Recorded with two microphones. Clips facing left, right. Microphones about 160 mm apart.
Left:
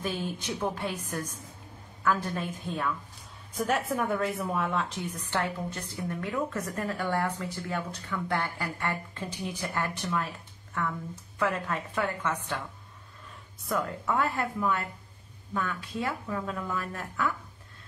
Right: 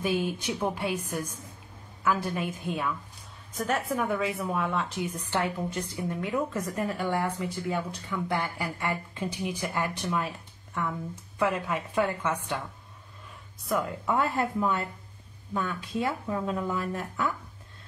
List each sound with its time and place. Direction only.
0.0 s a woman's voice: 10° right (ahead or behind)
3.5 s a woman's voice: 5° left (ahead or behind)
5.1 s a woman's voice: 15° right (ahead or behind)
13.7 s speech: 15° right (ahead or behind)